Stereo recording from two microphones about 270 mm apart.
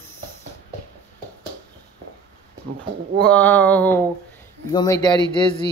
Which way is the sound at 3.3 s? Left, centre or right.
Centre.